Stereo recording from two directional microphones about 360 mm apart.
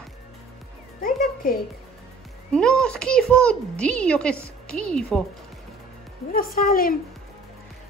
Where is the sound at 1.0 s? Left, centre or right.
Left.